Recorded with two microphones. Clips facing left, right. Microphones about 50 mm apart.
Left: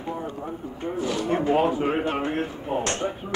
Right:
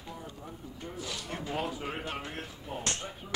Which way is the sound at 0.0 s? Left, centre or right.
Left.